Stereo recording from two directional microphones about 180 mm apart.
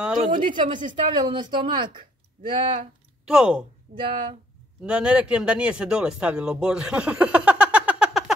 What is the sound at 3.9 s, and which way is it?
Speech, 50° right (ahead or behind).